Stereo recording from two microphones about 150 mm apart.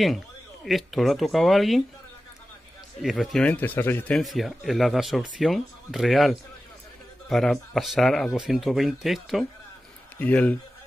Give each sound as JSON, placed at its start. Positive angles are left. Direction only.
{"t": 0.7, "sound": "speech", "side_deg": 0}
{"t": 3.0, "sound": "speech", "side_deg": 0}
{"t": 4.2, "sound": "speech", "side_deg": 0}
{"t": 10.1, "sound": "speech", "side_deg": 10}